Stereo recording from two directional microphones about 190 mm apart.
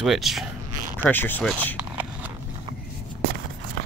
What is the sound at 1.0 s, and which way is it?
Speech, 10° left (ahead or behind).